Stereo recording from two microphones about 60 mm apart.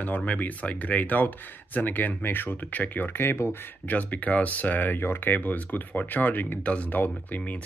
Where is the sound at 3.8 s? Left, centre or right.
Left.